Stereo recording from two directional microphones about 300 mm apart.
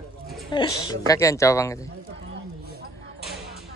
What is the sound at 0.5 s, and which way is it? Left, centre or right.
A woman's voice, centre.